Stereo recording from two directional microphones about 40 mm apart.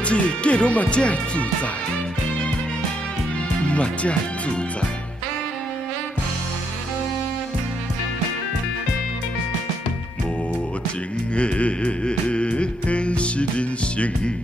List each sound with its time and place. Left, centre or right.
0.0 s speech: left
3.6 s speech: left
11.3 s music: left